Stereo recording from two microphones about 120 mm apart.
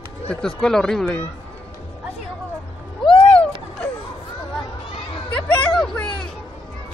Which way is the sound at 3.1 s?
50° left (ahead or behind).